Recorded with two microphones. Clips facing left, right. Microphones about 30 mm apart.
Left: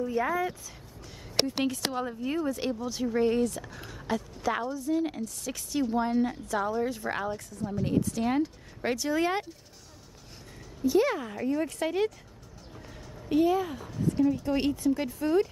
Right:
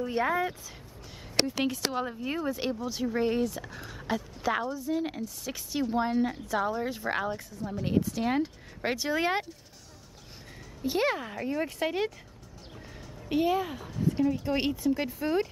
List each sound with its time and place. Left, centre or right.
0.0 s speech: right
1.6 s speech: centre
10.8 s speech: right
11.1 s speech: centre
13.3 s speech: centre